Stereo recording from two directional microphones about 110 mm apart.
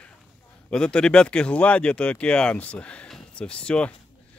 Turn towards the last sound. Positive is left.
turn(degrees=10)  # may be behind; listen again after turning